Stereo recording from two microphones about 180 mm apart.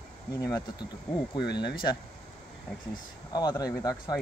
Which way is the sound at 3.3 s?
20° left (ahead or behind).